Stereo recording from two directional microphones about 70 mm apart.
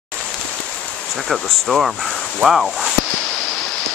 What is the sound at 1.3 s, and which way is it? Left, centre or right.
Speech, centre.